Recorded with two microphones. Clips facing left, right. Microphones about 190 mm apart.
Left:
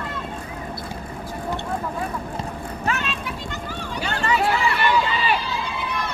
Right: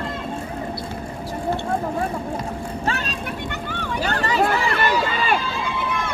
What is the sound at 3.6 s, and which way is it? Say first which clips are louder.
Vehicle: right 3 dB; 65° right (ahead or behind).